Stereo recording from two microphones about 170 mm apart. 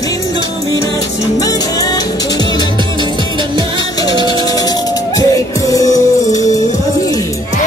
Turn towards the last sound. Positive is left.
turn(degrees=20)  # may be behind; listen again after turning